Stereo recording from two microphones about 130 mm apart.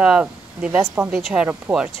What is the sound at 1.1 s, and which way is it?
Speech, 5° right (ahead or behind).